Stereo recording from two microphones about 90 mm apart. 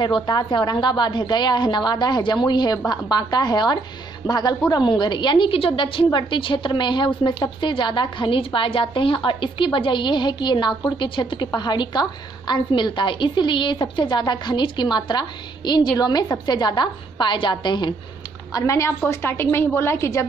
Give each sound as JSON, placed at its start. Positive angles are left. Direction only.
{"t": 0.0, "sound": "a woman's voice", "side_deg": 55}
{"t": 18.5, "sound": "a woman's voice", "side_deg": 40}